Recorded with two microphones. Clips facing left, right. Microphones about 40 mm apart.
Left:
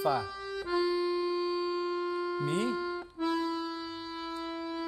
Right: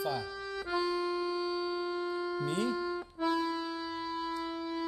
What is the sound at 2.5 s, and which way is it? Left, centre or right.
Speech, left.